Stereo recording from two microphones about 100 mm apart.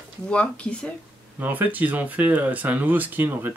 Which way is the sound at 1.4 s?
15° right (ahead or behind).